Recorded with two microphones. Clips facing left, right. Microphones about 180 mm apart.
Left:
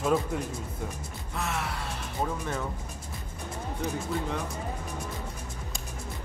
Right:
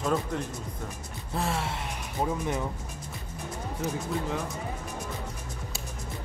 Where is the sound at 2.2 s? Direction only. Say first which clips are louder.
Right 3 dB; 15° right (ahead or behind).